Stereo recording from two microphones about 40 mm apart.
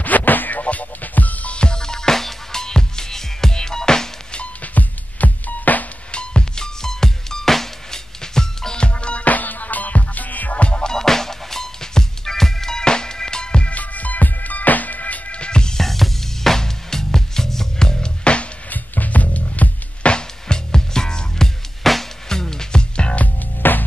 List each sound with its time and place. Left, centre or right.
0.0 s music: left
1.6 s music: centre
4.7 s music: left
6.1 s music: left
8.8 s music: left
10.6 s music: left
10.9 s music: centre
13.7 s music: left; by 15.8 s centre
15.8 s music: centre; by 18.5 s left
18.7 s music: left
20.1 s music: left
21.8 s music: centre
22.3 s music: centre
23.6 s music: left